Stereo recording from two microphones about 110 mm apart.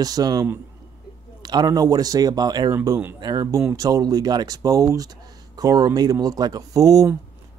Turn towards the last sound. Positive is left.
turn(degrees=-35)  # may be behind; listen again after turning